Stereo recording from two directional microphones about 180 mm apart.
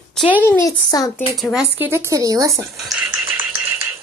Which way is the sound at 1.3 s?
Centre (ahead or behind).